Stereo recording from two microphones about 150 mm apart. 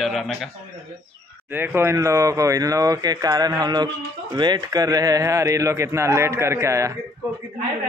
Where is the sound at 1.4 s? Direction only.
15° right (ahead or behind).